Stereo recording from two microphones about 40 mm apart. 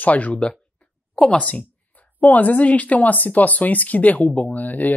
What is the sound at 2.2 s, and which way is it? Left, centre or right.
Speech, left.